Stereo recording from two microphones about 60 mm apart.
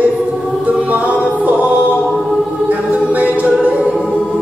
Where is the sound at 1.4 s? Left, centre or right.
Right.